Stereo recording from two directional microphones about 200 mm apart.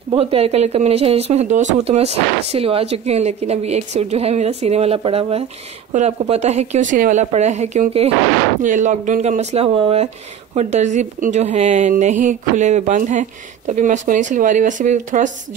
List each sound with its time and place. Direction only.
0.1 s speech: 30° right (ahead or behind)